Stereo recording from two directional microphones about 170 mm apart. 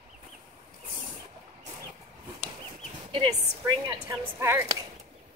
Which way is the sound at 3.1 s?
25° right (ahead or behind).